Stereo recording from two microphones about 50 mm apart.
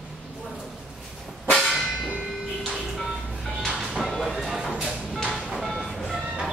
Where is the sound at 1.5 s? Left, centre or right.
Centre.